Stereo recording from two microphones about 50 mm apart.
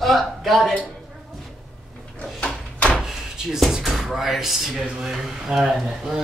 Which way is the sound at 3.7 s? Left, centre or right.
Centre.